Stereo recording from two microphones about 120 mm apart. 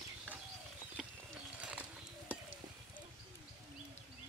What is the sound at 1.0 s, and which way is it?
Clip-clop, centre (ahead or behind).